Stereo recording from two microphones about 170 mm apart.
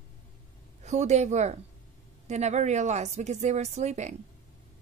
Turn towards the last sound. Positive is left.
turn(degrees=-45)  # may be behind; listen again after turning